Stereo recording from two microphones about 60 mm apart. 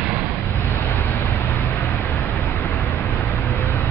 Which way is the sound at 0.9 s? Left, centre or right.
Left.